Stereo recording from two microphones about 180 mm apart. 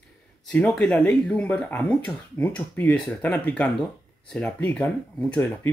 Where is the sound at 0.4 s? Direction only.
5° left (ahead or behind).